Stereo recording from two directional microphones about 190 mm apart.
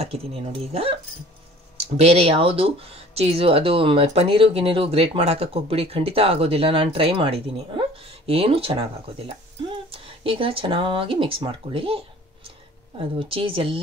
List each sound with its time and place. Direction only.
0.0 s speech: 30° right (ahead or behind)
2.0 s speech: 35° right (ahead or behind)
9.8 s speech: 30° right (ahead or behind)